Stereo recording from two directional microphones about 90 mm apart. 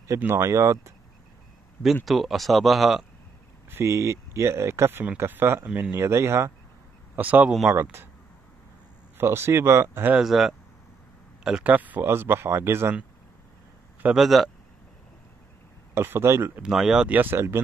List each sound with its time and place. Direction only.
0.2 s speech: 30° right (ahead or behind)
2.0 s speech: centre (ahead or behind)
3.7 s speech: 35° right (ahead or behind)
7.2 s speech: 15° right (ahead or behind)
9.2 s speech: 25° right (ahead or behind)
10.1 s speech: 5° right (ahead or behind)
11.7 s speech: 20° right (ahead or behind)
14.1 s speech: centre (ahead or behind)
15.9 s speech: 25° right (ahead or behind)
16.6 s speech: 5° right (ahead or behind)
17.1 s speech: 25° right (ahead or behind)